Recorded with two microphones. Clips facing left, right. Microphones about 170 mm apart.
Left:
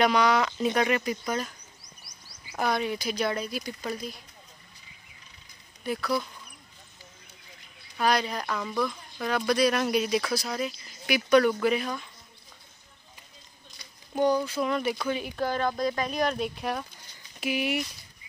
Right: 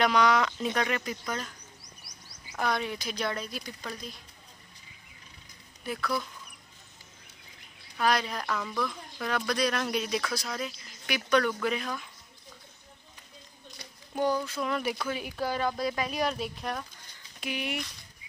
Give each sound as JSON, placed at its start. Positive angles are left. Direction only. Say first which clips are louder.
{"t": 0.0, "sound": "speech", "louder": "left 1 dB", "side_deg": 0}
{"t": 2.0, "sound": "a sound", "louder": "right 1 dB", "side_deg": -65}
{"t": 2.5, "sound": "speech", "louder": "left 3 dB", "side_deg": 5}
{"t": 5.9, "sound": "speech", "louder": "left 3 dB", "side_deg": 5}
{"t": 8.0, "sound": "speech", "louder": "left 2 dB", "side_deg": 0}
{"t": 14.1, "sound": "speech", "louder": "left 4 dB", "side_deg": 0}